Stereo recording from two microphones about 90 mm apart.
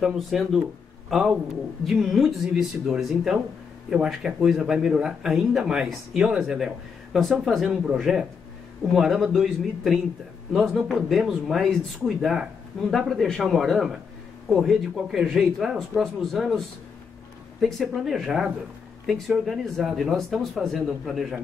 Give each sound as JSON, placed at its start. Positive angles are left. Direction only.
{"t": 0.0, "sound": "speech", "side_deg": -5}
{"t": 1.9, "sound": "speech", "side_deg": 0}